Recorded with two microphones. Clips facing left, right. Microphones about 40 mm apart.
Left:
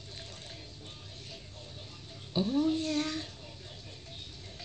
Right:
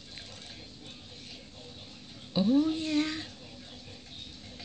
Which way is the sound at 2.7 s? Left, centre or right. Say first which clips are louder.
Right 2 dB; right.